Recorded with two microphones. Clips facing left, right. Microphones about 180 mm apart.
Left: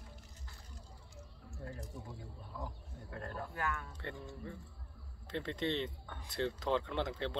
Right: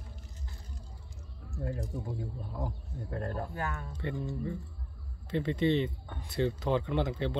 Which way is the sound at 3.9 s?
10° right (ahead or behind).